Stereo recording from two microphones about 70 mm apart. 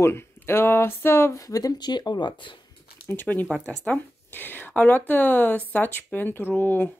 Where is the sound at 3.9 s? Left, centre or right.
Left.